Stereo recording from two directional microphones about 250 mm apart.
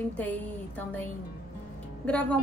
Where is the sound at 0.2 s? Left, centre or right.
Centre.